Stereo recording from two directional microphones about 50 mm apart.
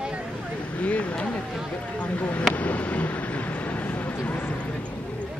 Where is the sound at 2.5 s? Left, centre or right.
Left.